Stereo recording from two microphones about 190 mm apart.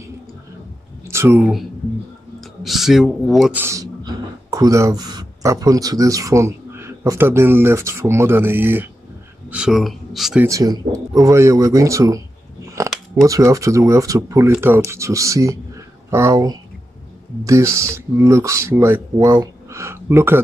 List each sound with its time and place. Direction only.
1.0 s a sound: 15° right (ahead or behind)
2.6 s speech: centre (ahead or behind)
3.6 s speech: 20° right (ahead or behind); by 10.4 s centre (ahead or behind)
10.4 s speech: 15° right (ahead or behind)
13.2 s speech: 15° right (ahead or behind)